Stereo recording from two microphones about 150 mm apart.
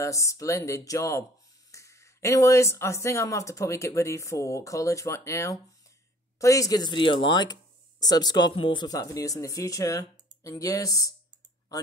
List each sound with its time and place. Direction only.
0.0 s speech: 20° left (ahead or behind)